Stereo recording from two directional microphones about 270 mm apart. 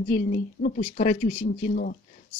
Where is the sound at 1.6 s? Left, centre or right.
Left.